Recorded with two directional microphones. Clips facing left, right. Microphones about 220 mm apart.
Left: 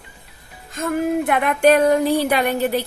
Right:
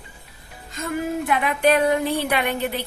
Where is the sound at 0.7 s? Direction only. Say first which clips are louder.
Left 5 dB; 50° left (ahead or behind).